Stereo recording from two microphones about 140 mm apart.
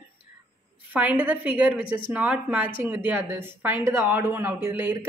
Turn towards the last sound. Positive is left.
turn(degrees=-20)  # may be behind; listen again after turning